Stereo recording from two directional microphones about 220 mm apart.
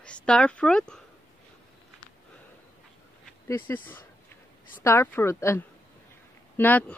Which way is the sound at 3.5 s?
10° left (ahead or behind).